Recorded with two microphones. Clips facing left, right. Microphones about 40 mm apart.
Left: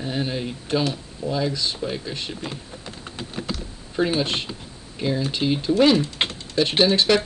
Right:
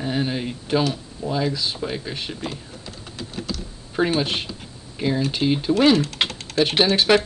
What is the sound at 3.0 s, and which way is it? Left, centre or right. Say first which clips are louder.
Typing: left 1 dB; left.